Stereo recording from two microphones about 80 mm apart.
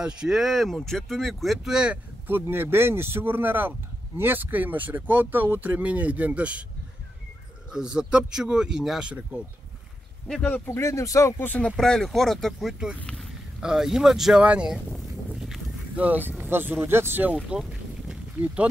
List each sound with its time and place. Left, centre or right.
0.0 s speech: centre
2.4 s speech: right
7.7 s speech: centre
10.2 s speech: centre
10.7 s speech: left
11.4 s speech: left
11.7 s speech: centre
16.0 s speech: right
17.5 s boat: centre